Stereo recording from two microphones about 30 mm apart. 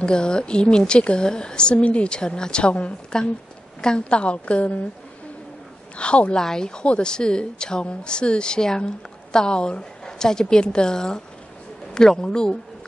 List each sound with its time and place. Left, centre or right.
0.0 s a woman's voice: left
3.1 s a woman's voice: left
4.2 s a woman's voice: left
5.9 s a woman's voice: left
6.3 s a woman's voice: left
6.7 s a woman's voice: left